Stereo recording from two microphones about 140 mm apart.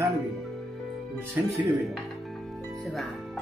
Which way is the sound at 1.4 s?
15° right (ahead or behind).